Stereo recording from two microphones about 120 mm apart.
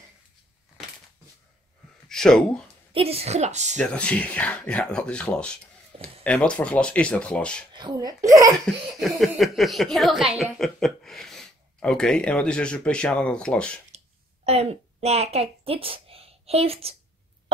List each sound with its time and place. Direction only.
2.0 s speech: 5° left (ahead or behind)
2.9 s a woman's voice: 55° right (ahead or behind)
3.7 s speech: 10° left (ahead or behind)
7.7 s speech: 40° right (ahead or behind)
9.2 s speech: centre (ahead or behind)
13.9 s a sound: 60° right (ahead or behind)
15.6 s a woman's voice: 50° right (ahead or behind)